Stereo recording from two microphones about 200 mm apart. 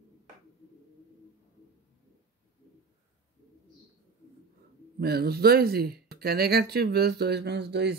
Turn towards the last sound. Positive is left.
turn(degrees=-55)  # may be behind; listen again after turning